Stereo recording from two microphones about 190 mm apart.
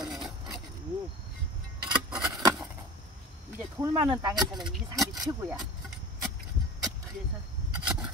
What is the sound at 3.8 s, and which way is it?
Speech, 15° right (ahead or behind).